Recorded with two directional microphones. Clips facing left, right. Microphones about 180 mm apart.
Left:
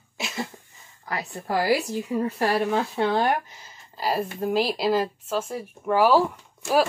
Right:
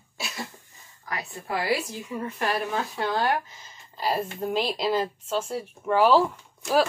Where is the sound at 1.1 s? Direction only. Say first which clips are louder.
Left 3 dB; 35° left (ahead or behind).